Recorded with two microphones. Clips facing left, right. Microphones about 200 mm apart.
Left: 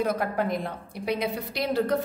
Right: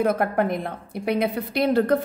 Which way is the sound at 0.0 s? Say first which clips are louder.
Right 5 dB; 55° right (ahead or behind).